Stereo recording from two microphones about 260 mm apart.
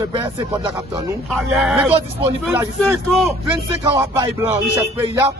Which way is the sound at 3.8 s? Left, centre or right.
Centre.